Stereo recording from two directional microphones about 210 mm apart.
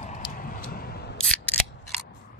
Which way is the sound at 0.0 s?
45° left (ahead or behind).